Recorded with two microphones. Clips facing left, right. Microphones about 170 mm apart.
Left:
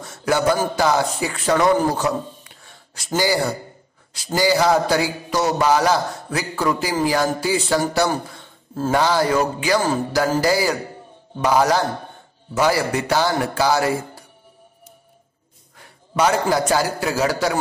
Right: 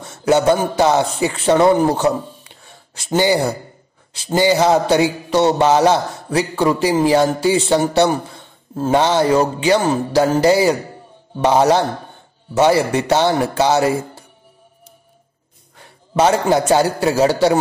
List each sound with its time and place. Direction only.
0.0 s a man's voice: 25° right (ahead or behind)
16.2 s a man's voice: 25° right (ahead or behind)